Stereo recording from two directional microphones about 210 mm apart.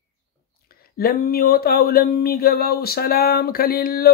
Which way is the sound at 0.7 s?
45° left (ahead or behind).